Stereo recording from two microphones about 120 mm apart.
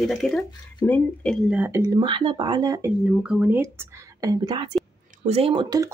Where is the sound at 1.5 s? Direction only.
15° right (ahead or behind).